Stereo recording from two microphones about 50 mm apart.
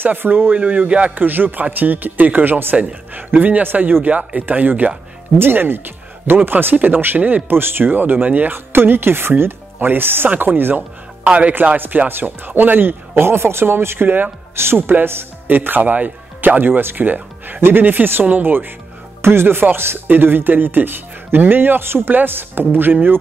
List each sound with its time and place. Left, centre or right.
0.0 s speech: right
0.6 s speech: right
1.1 s speech: right
5.4 s speech: right
8.5 s speech: right
11.2 s speech: right
11.6 s speech: right
14.0 s speech: right
14.5 s speech: right
19.2 s speech: right